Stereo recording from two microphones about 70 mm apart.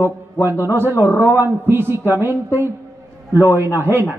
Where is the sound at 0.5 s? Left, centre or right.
Left.